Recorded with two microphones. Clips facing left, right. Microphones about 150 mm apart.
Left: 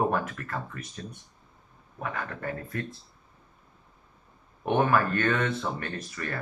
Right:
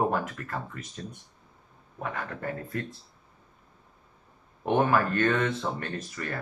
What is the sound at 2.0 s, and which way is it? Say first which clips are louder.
Speech: even; 25° right (ahead or behind).